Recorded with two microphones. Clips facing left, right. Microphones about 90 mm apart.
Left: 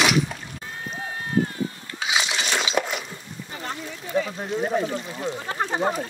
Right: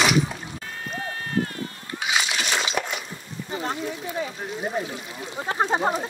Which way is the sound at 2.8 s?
10° left (ahead or behind).